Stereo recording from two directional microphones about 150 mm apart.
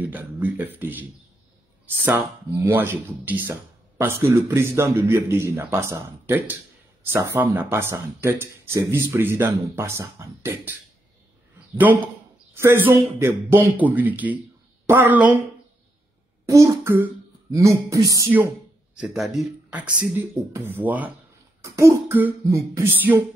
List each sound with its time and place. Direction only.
0.0 s speech: 10° right (ahead or behind)
2.0 s speech: 15° right (ahead or behind)
11.7 s speech: 10° right (ahead or behind)
16.4 s speech: 20° right (ahead or behind)
18.9 s speech: centre (ahead or behind)